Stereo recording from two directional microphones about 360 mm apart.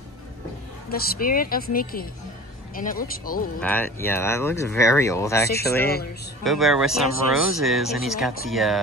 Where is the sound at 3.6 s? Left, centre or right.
Centre.